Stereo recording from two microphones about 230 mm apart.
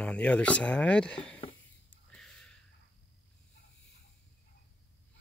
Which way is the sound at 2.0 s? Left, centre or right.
Centre.